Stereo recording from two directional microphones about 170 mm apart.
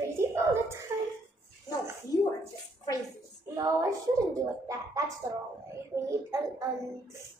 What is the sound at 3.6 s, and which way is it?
Speech, 20° right (ahead or behind).